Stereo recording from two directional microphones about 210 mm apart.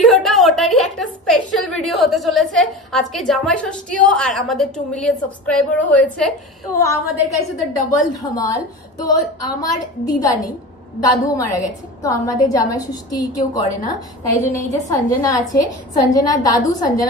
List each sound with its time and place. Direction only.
0.0 s a woman's voice: centre (ahead or behind)
6.7 s a woman's voice: 15° left (ahead or behind)